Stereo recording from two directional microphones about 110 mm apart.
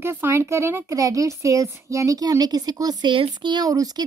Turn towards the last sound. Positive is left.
turn(degrees=-35)  # may be behind; listen again after turning